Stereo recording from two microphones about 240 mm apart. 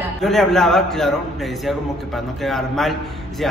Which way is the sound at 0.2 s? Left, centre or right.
Centre.